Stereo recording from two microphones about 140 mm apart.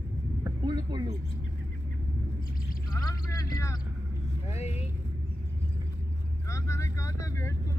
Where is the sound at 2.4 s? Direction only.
90° left.